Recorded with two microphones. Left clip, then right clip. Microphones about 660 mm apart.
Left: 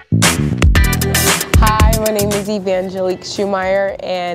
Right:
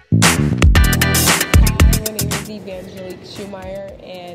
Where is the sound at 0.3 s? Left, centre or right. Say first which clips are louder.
Even; centre.